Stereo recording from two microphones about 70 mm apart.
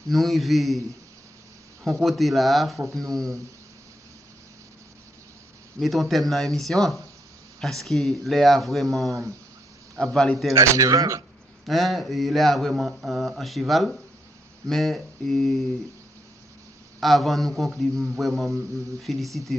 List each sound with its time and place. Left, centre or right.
0.1 s speech: centre
1.9 s speech: centre
5.8 s speech: centre
9.9 s a man's voice: centre
10.5 s speech: right
11.6 s speech: centre
17.0 s speech: centre
18.5 s speech: right
19.0 s speech: centre